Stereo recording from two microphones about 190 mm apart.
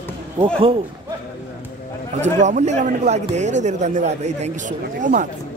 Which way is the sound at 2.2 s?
40° right (ahead or behind).